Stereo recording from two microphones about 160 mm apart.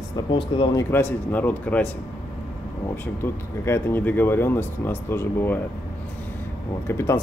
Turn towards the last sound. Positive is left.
turn(degrees=15)  # may be behind; listen again after turning